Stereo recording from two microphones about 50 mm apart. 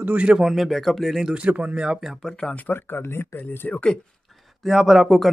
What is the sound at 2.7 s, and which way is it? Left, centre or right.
Speech, left.